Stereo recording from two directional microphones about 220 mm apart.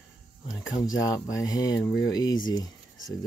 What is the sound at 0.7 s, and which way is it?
Speech, 15° left (ahead or behind).